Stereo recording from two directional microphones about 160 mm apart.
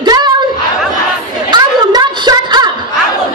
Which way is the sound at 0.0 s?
25° right (ahead or behind).